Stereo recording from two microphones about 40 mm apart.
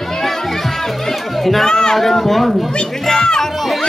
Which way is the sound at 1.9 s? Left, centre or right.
Centre.